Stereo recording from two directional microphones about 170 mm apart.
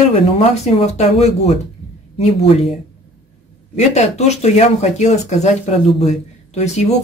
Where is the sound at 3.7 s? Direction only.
40° left (ahead or behind).